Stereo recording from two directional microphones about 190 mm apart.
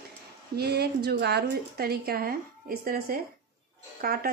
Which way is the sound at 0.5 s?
55° right (ahead or behind).